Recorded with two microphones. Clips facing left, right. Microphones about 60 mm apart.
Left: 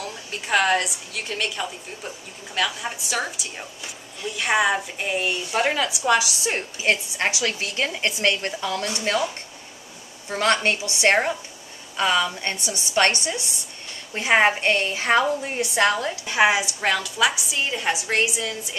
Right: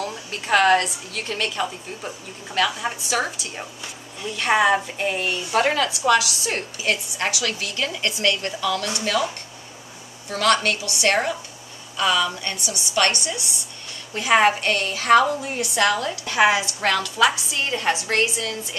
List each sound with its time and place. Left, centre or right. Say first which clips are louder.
0.0 s a woman's voice: right 3 dB; centre
5.9 s a woman's voice: right 2 dB; centre
10.3 s a woman's voice: right 1 dB; left